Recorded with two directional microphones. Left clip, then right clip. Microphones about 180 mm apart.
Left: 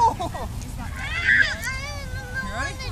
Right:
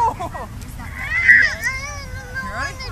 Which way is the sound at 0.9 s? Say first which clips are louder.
Right 7 dB; 35° right (ahead or behind).